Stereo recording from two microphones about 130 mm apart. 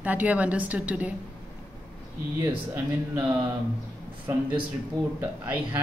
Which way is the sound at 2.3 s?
20° right (ahead or behind).